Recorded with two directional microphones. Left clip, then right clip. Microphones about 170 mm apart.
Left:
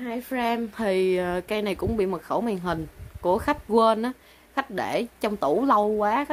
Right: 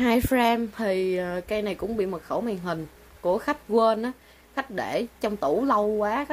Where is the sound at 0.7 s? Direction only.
10° left (ahead or behind).